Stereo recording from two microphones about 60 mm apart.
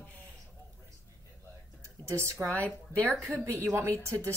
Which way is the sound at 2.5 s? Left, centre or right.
Left.